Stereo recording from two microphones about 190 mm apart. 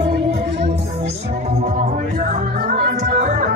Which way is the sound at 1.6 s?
40° right (ahead or behind).